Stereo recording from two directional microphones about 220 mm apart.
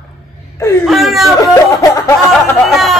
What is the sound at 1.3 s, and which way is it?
Speech, 15° left (ahead or behind).